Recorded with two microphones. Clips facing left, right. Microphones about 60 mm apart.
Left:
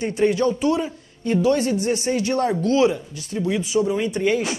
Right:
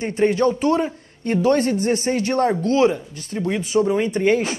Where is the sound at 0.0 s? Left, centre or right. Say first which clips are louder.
Right 1 dB; right.